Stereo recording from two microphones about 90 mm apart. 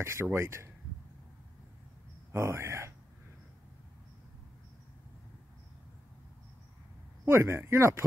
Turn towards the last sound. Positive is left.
turn(degrees=-30)  # may be behind; listen again after turning